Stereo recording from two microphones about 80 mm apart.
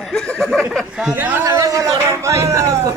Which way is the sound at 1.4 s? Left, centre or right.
Right.